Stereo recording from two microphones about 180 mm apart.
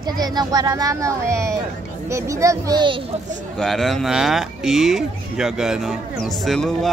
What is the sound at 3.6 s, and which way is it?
Speech, centre (ahead or behind).